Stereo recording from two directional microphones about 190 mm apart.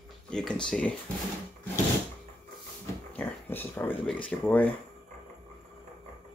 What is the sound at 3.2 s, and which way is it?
Speech, 10° left (ahead or behind).